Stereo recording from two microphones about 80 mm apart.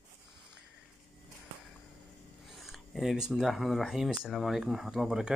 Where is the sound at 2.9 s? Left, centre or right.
Centre.